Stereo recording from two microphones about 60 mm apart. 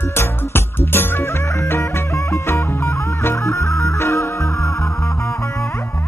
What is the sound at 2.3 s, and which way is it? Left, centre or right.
Music, left.